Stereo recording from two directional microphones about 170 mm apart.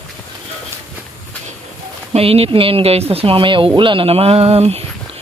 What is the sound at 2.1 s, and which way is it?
Speech, 35° right (ahead or behind).